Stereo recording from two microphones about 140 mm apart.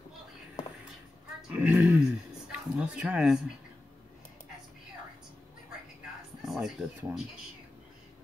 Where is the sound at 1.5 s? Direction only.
10° right (ahead or behind).